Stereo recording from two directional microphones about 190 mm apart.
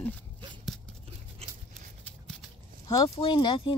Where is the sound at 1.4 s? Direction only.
30° right (ahead or behind).